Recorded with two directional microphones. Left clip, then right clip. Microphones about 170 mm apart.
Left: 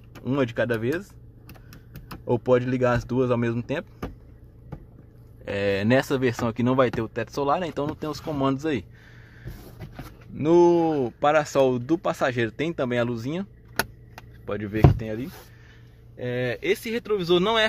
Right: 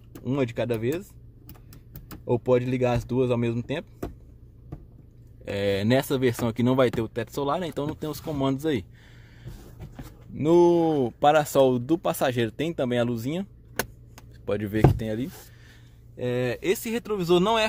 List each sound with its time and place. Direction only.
0.1 s speech: 15° right (ahead or behind)
5.4 s speech: 20° right (ahead or behind)
10.3 s speech: 20° right (ahead or behind)
14.4 s speech: 35° right (ahead or behind)
16.2 s speech: 45° right (ahead or behind); by 17.6 s 20° right (ahead or behind)